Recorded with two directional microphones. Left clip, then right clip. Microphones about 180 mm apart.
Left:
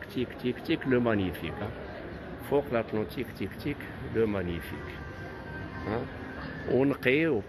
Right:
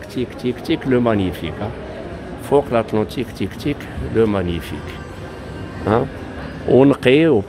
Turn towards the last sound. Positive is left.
turn(degrees=-20)  # may be behind; listen again after turning